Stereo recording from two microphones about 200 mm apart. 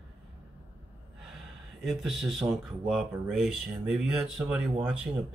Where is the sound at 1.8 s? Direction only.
Centre (ahead or behind).